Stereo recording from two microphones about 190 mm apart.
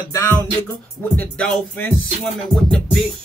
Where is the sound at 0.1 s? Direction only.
15° left (ahead or behind).